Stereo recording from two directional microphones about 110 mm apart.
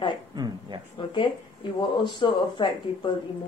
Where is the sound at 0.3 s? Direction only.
40° right (ahead or behind).